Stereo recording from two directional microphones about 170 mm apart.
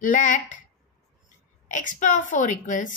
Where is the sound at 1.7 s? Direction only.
50° left (ahead or behind).